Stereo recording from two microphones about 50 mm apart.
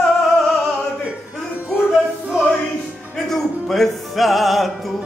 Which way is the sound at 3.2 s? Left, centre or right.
Centre.